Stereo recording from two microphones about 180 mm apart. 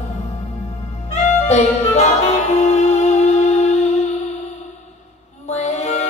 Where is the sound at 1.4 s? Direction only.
40° left (ahead or behind).